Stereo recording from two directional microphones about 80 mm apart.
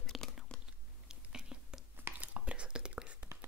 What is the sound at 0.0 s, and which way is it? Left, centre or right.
Biting, centre.